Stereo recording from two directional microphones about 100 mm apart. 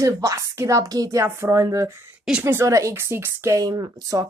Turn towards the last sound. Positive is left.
turn(degrees=-40)  # may be behind; listen again after turning